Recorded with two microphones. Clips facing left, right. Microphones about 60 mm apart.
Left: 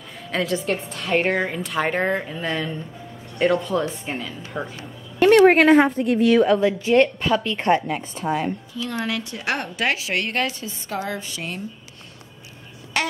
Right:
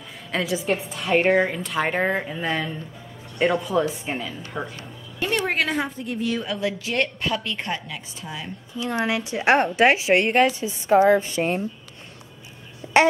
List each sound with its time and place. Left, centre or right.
0.3 s a woman's voice: centre
5.2 s a sound: left
5.5 s a woman's voice: left
6.6 s a woman's voice: left
7.6 s a woman's voice: left
8.7 s a woman's voice: centre; by 11.6 s right
12.8 s a sound: right